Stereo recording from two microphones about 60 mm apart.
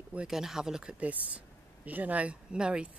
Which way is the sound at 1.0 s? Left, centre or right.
Right.